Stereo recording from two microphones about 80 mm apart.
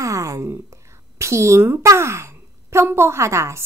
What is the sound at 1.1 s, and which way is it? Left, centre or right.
A woman's voice, right.